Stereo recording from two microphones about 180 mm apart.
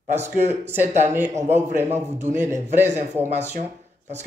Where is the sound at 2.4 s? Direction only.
15° right (ahead or behind).